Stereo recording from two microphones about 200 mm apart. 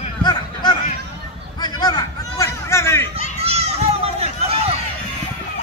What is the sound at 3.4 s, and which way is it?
Run, 30° right (ahead or behind).